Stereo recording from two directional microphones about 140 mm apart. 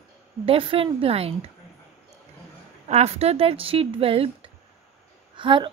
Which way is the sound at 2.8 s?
50° right (ahead or behind).